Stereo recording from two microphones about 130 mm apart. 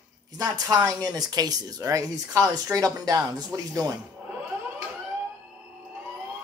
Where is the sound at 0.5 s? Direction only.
30° right (ahead or behind).